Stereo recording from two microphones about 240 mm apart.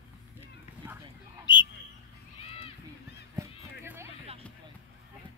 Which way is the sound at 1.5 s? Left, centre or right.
Centre.